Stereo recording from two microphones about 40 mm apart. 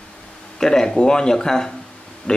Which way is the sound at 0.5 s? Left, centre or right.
Centre.